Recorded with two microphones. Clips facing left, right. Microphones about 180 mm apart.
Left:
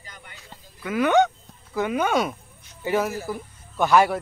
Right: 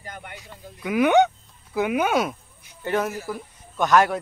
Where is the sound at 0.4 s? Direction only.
15° right (ahead or behind).